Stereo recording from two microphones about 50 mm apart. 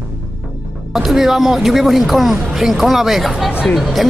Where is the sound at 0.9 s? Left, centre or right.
Centre.